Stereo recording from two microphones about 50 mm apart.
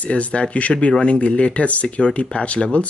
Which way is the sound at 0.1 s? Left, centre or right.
Left.